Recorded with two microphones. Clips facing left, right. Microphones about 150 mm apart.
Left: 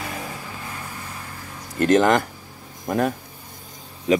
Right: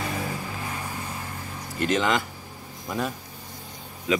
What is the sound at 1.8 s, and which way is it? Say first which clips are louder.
Speech: left 7 dB; 50° left (ahead or behind).